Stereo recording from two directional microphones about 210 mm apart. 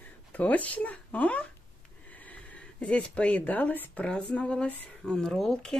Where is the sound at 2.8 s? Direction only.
5° left (ahead or behind).